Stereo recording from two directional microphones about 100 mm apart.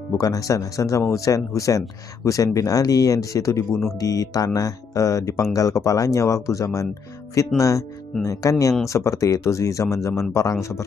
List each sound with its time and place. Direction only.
0.2 s speech: 35° left (ahead or behind)